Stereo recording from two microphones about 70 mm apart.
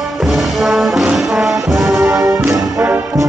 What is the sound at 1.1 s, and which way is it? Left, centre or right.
Music, centre.